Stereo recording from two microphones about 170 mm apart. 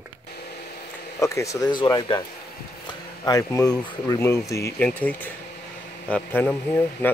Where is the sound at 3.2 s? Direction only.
20° left (ahead or behind).